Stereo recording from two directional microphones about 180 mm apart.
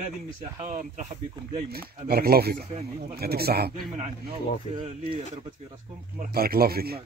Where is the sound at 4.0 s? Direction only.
30° right (ahead or behind).